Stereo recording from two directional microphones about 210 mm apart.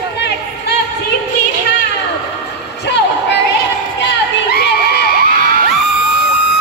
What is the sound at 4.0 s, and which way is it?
Crowd, 55° left (ahead or behind).